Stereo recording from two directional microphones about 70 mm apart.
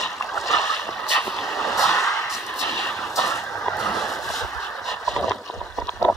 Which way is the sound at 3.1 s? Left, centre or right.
Left.